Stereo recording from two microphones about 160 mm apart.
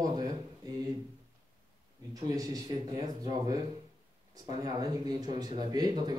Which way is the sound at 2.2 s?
25° right (ahead or behind).